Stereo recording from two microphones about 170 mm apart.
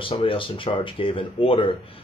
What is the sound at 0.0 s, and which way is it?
Speech, 30° left (ahead or behind).